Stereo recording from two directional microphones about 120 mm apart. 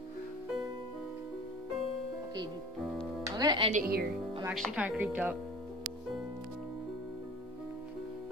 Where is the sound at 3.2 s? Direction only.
35° right (ahead or behind).